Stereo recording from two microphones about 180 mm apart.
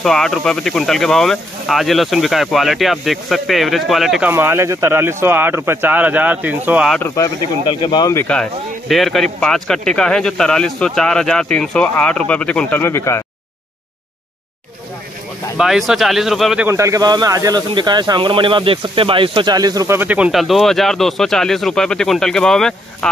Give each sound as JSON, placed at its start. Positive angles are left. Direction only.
{"t": 0.0, "sound": "speech", "side_deg": 0}
{"t": 4.3, "sound": "speech", "side_deg": -15}
{"t": 7.0, "sound": "speech", "side_deg": 15}
{"t": 15.5, "sound": "speech", "side_deg": -5}
{"t": 16.6, "sound": "speech", "side_deg": -15}